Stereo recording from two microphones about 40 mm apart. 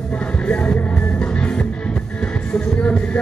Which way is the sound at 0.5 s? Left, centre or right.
Left.